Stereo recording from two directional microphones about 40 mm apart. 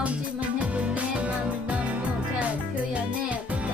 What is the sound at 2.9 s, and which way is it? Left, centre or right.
Music, right.